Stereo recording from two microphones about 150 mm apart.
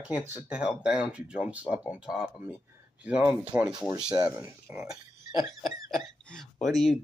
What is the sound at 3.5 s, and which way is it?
Speech, 10° right (ahead or behind).